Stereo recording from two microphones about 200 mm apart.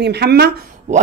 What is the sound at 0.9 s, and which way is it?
Speech, 35° right (ahead or behind).